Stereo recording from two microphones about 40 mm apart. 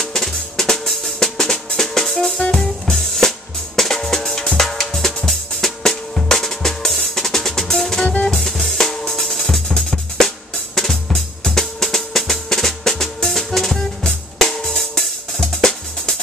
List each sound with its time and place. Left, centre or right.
0.1 s music: centre
2.5 s drum kit: centre
8.0 s music: left
8.4 s drum: centre
14.0 s drum kit: centre
15.0 s music: centre